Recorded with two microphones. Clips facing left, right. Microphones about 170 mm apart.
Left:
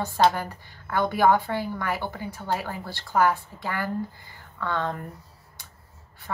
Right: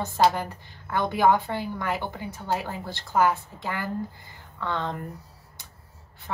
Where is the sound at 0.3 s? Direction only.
20° right (ahead or behind).